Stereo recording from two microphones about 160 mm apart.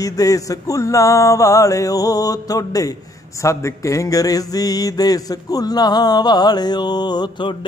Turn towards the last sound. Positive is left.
turn(degrees=30)  # may be behind; listen again after turning